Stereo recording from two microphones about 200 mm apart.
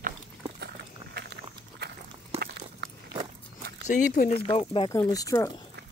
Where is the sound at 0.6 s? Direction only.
55° right (ahead or behind).